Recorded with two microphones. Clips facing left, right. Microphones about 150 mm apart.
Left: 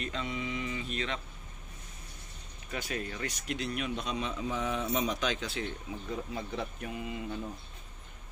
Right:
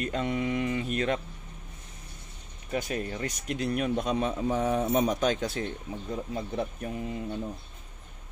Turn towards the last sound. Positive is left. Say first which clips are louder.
# right 4 dB
turn(degrees=-40)  # may be behind; listen again after turning